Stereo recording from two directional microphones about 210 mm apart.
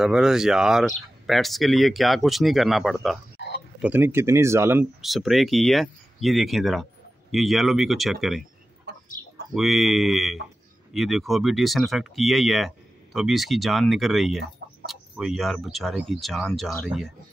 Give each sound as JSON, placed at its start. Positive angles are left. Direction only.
{"t": 0.0, "sound": "speech", "side_deg": 0}
{"t": 3.3, "sound": "a sound", "side_deg": 55}
{"t": 3.8, "sound": "speech", "side_deg": -10}
{"t": 5.0, "sound": "speech", "side_deg": 0}
{"t": 9.5, "sound": "speech", "side_deg": 0}